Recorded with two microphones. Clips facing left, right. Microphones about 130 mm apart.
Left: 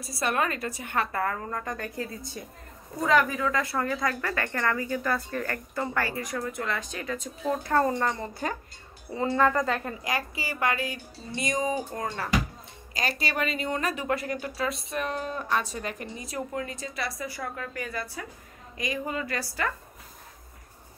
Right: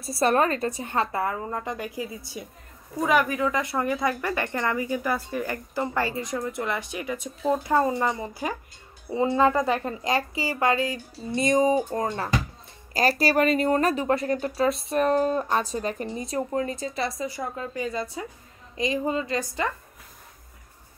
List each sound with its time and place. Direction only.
0.2 s speech: 35° right (ahead or behind)
1.9 s speech: 5° right (ahead or behind); by 12.3 s 25° right (ahead or behind)
13.2 s speech: 40° right (ahead or behind)
14.9 s speech: 40° right (ahead or behind); by 19.7 s 20° right (ahead or behind)